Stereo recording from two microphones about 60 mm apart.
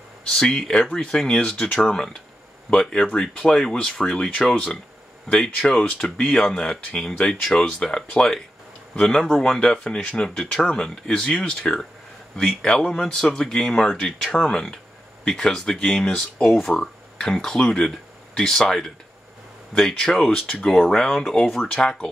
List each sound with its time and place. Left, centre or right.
0.3 s speech: centre